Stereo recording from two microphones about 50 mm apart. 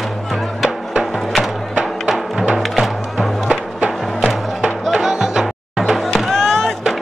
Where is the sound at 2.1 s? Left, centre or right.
Centre.